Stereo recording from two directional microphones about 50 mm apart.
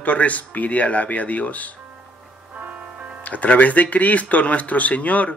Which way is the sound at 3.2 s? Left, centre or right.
Left.